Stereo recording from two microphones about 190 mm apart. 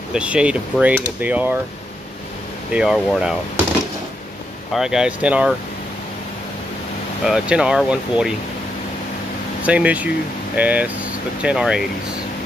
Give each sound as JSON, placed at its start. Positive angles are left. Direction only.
{"t": 0.1, "sound": "speech", "side_deg": -5}
{"t": 2.7, "sound": "speech", "side_deg": 0}
{"t": 4.7, "sound": "speech", "side_deg": -5}
{"t": 7.2, "sound": "speech", "side_deg": -5}
{"t": 9.6, "sound": "speech", "side_deg": -5}